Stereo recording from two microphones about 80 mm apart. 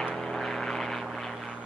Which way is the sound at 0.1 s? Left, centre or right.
Centre.